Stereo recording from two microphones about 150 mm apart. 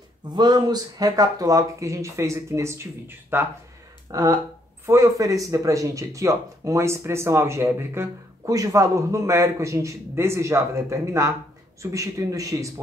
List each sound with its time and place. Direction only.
0.3 s speech: 30° right (ahead or behind)